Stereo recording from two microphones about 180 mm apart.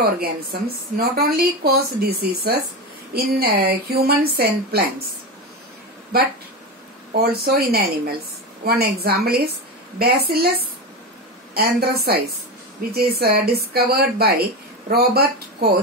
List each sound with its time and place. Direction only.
0.2 s speech: 60° right (ahead or behind)
7.2 s speech: 60° right (ahead or behind)
11.5 s speech: 60° right (ahead or behind)